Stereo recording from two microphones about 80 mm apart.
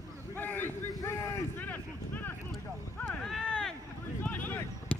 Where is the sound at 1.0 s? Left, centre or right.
Left.